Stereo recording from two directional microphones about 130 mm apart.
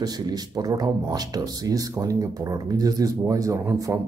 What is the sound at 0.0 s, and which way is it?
Speech, 30° right (ahead or behind).